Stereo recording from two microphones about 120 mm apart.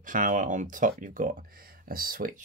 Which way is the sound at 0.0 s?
90° right.